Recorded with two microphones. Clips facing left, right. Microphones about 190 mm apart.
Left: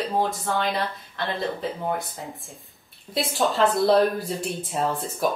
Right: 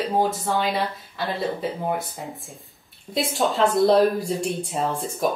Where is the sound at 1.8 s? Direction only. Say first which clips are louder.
Right 2 dB; 15° right (ahead or behind).